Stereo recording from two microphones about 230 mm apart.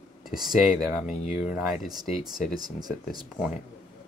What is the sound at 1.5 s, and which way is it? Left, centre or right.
Speech, centre.